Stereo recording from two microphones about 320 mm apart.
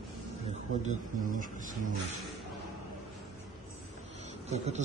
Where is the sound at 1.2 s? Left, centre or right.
Right.